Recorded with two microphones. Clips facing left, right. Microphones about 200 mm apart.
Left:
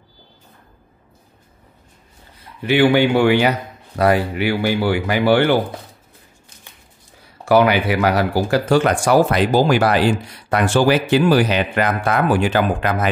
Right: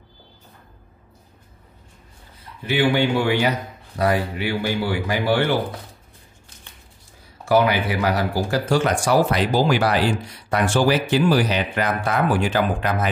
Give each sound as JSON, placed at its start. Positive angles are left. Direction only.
{"t": 2.6, "sound": "speech", "side_deg": 70}
{"t": 7.4, "sound": "speech", "side_deg": 70}
{"t": 10.5, "sound": "speech", "side_deg": 65}